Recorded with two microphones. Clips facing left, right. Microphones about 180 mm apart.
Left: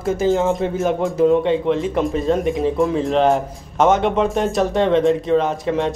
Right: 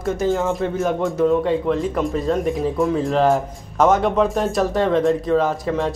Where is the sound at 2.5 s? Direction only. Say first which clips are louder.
Left 2 dB; centre (ahead or behind).